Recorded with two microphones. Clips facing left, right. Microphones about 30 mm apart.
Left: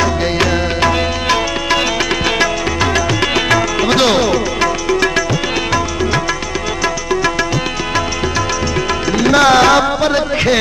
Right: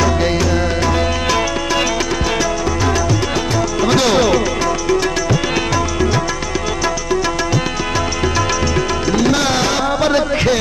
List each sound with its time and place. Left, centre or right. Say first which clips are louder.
0.8 s music: left 2 dB; left
2.0 s music: left 3 dB; left
3.2 s music: left 4 dB; left
3.8 s music: right 1 dB; left
4.6 s music: left 2 dB; left
9.1 s tabla: left 6 dB; left
9.9 s a sound: even; centre